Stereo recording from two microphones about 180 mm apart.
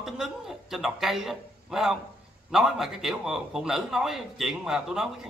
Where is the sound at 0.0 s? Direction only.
Centre (ahead or behind).